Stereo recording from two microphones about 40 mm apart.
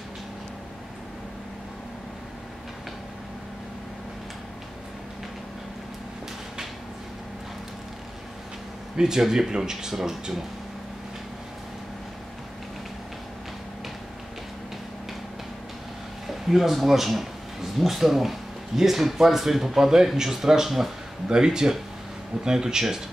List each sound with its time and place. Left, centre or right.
8.9 s speech: centre
16.3 s speech: centre
21.3 s speech: centre